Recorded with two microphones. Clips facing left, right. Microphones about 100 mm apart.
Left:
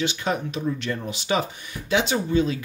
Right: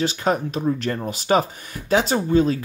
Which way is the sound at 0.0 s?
40° right (ahead or behind).